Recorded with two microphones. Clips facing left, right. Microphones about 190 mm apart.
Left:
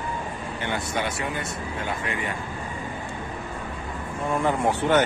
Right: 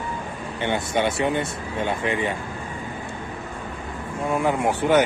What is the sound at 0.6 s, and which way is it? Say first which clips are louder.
Speech: right 6 dB; 25° right (ahead or behind).